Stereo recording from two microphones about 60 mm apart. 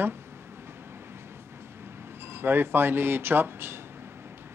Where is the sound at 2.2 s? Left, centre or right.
Right.